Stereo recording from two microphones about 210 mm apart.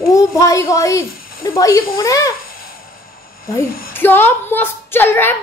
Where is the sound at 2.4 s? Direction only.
45° left (ahead or behind).